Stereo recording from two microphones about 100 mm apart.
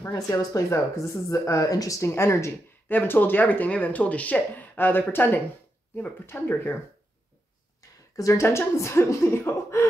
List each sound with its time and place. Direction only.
0.0 s speech: 35° left (ahead or behind)
8.2 s speech: 30° left (ahead or behind)